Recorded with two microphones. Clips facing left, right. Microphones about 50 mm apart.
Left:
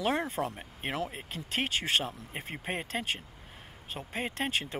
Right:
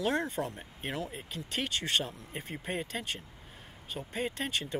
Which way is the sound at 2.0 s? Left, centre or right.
Left.